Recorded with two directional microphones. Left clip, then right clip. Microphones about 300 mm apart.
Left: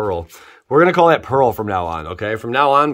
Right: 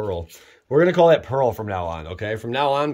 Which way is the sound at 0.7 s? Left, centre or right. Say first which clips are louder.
Left 3 dB; centre.